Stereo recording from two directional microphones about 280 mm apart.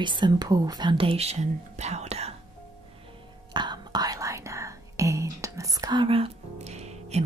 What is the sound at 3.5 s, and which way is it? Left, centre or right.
Whispering, centre.